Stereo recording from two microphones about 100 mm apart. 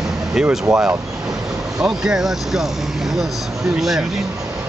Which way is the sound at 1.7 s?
5° right (ahead or behind).